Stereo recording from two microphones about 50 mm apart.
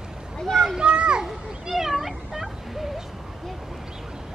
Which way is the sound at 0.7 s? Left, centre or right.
Centre.